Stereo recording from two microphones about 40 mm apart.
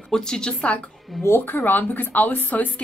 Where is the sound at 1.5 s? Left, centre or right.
Left.